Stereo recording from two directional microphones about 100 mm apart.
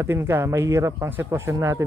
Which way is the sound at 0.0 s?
25° right (ahead or behind).